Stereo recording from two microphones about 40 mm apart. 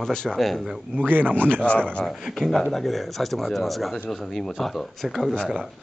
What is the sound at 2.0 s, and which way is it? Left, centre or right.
Speech, centre.